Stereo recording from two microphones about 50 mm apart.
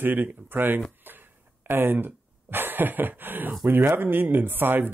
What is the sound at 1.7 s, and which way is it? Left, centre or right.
Speech, right.